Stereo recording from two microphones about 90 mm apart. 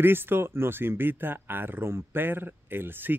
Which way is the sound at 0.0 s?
25° right (ahead or behind).